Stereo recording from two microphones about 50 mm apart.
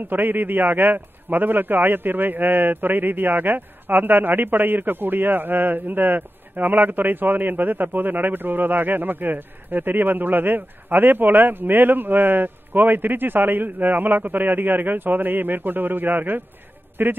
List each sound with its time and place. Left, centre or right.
0.1 s a man's voice: right